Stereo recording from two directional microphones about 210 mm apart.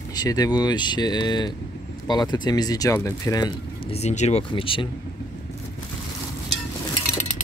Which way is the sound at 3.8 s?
30° left (ahead or behind).